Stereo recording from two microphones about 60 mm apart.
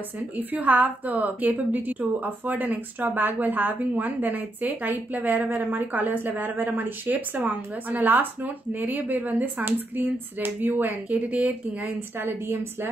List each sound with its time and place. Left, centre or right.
0.4 s a woman's voice: right
12.2 s a woman's voice: right